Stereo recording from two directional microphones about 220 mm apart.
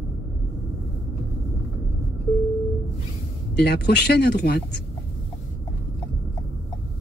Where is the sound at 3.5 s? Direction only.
45° left (ahead or behind).